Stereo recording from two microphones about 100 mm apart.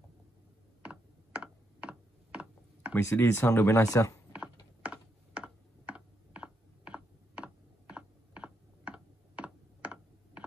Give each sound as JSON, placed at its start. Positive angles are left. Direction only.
{"t": 0.8, "sound": "typing", "side_deg": -10}
{"t": 2.9, "sound": "speech", "side_deg": 25}
{"t": 4.3, "sound": "computer keyboard", "side_deg": -10}